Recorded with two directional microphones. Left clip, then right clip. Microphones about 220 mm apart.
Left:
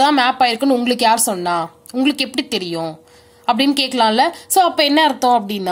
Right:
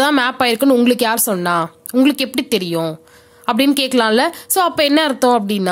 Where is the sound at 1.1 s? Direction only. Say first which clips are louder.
Even; 45° right (ahead or behind).